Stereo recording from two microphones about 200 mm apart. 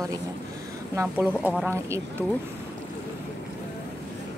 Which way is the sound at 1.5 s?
10° right (ahead or behind).